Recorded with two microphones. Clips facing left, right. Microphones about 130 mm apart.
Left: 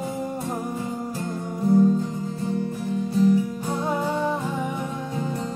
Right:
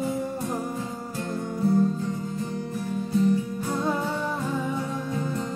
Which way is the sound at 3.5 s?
15° left (ahead or behind).